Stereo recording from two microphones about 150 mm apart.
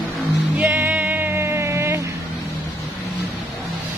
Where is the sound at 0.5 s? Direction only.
10° right (ahead or behind).